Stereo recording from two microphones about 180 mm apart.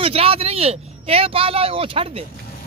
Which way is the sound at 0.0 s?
30° right (ahead or behind).